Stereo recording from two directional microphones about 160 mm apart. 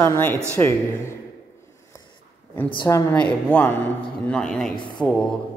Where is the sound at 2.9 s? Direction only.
20° left (ahead or behind); by 4.7 s 5° left (ahead or behind).